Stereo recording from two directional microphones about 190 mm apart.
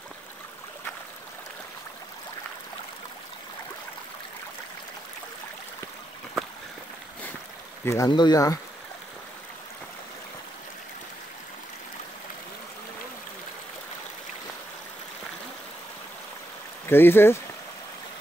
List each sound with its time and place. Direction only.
7.8 s speech: 15° left (ahead or behind)
16.8 s speech: 10° left (ahead or behind)